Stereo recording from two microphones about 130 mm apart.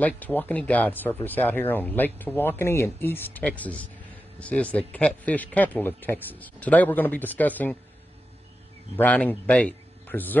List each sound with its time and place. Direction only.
0.0 s speech: 15° left (ahead or behind)
8.9 s a man's voice: 10° left (ahead or behind)